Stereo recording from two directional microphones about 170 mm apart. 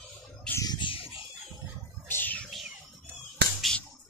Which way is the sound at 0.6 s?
25° left (ahead or behind).